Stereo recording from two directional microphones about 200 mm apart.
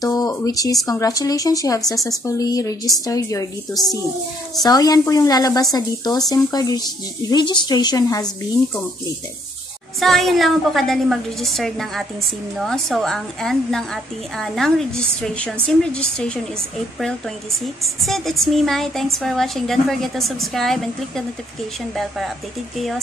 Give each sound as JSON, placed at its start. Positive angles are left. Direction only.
{"t": 0.0, "sound": "a sound", "side_deg": 20}
{"t": 0.8, "sound": "a woman's voice", "side_deg": 20}
{"t": 4.6, "sound": "speech", "side_deg": 20}
{"t": 9.9, "sound": "a woman's voice", "side_deg": 0}
{"t": 18.0, "sound": "a woman's voice", "side_deg": 0}